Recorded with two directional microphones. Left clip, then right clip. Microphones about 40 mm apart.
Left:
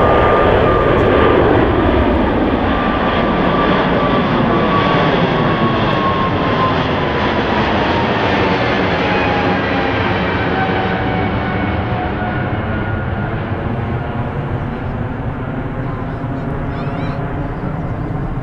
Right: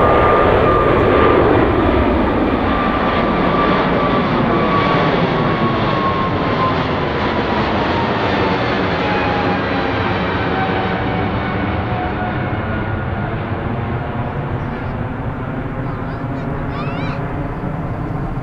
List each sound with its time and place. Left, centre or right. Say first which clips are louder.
0.0 s vehicle: even; left